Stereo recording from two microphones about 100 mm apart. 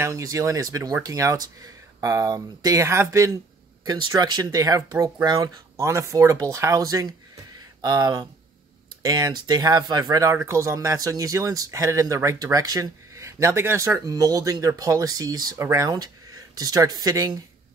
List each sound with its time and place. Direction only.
0.0 s speech: 35° right (ahead or behind)
3.8 s speech: 45° right (ahead or behind)
7.5 s a sound: 45° right (ahead or behind)
9.0 s speech: 40° right (ahead or behind)